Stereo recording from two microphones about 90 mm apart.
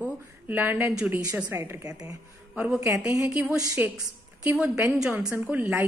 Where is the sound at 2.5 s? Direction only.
15° right (ahead or behind).